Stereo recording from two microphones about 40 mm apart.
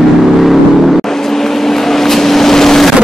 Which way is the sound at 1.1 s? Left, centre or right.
Centre.